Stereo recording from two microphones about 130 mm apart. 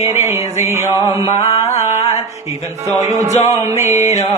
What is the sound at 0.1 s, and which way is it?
Music, 20° right (ahead or behind).